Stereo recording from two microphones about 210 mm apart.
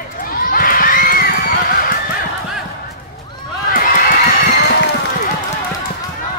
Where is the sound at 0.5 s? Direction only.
40° left (ahead or behind).